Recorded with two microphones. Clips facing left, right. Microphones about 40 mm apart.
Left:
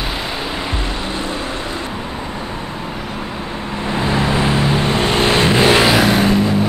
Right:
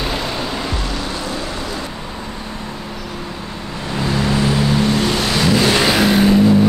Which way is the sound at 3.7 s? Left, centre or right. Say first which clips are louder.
Left 2 dB; left.